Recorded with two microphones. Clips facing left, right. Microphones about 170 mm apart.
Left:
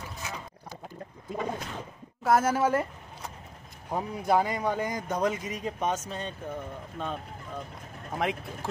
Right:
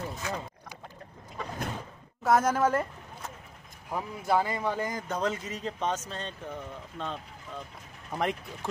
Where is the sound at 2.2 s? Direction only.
5° left (ahead or behind).